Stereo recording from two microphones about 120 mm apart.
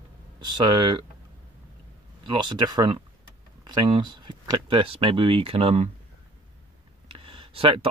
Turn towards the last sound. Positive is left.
turn(degrees=-50)  # may be behind; listen again after turning